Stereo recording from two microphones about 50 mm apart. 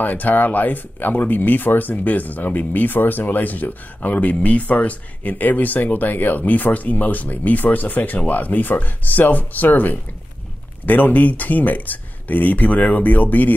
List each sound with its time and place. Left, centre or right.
0.0 s speech: left